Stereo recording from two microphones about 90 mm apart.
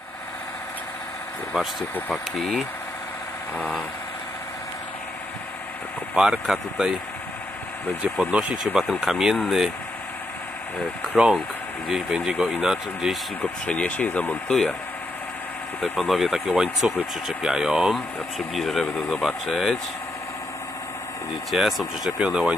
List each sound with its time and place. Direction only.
1.5 s speech: 5° right (ahead or behind)
6.1 s speech: 5° right (ahead or behind)
8.0 s speech: 10° right (ahead or behind)
11.2 s speech: 5° right (ahead or behind)
13.4 s speech: 15° left (ahead or behind)
14.5 s speech: 5° left (ahead or behind)
15.8 s speech: centre (ahead or behind)
21.5 s speech: centre (ahead or behind)